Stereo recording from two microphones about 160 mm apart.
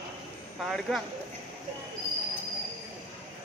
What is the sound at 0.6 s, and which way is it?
Speech, centre (ahead or behind).